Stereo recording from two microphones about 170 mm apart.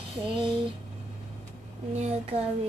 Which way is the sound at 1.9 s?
40° right (ahead or behind).